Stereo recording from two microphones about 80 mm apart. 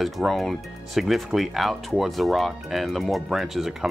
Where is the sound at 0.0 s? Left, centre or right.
Centre.